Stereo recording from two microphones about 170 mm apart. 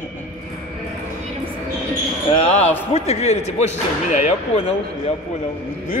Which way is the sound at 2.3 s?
40° left (ahead or behind).